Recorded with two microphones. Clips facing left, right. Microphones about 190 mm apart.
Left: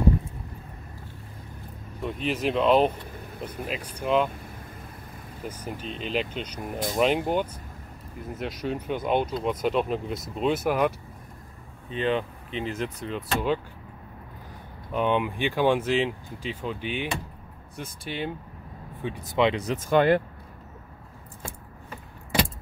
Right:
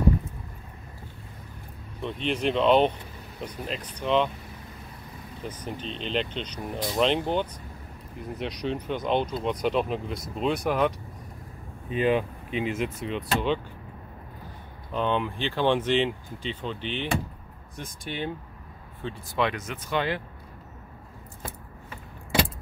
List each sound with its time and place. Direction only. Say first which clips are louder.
2.0 s speech: even; 5° left (ahead or behind)
5.4 s speech: even; 10° left (ahead or behind)
11.9 s speech: right 2 dB; 10° right (ahead or behind)
14.9 s speech: left 2 dB; 10° left (ahead or behind)
19.0 s speech: left 4 dB; 20° left (ahead or behind)
19.6 s speech: left 7 dB; 40° left (ahead or behind)